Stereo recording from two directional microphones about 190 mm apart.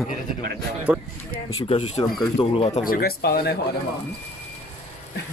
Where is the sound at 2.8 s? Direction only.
55° left (ahead or behind).